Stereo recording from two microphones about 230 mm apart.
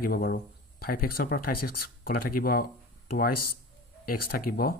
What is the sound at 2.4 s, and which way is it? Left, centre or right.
Speech, left.